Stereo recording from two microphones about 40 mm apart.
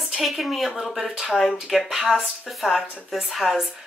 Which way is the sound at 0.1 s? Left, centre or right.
Centre.